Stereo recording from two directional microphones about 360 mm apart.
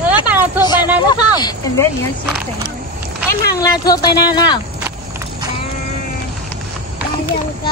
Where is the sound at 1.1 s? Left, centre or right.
Centre.